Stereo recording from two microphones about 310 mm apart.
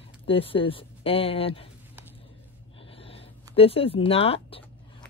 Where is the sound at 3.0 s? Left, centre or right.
Centre.